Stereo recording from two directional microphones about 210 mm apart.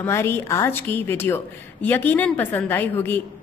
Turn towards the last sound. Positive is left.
turn(degrees=10)  # may be behind; listen again after turning